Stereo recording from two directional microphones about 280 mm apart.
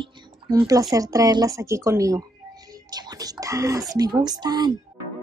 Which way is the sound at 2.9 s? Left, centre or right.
Centre.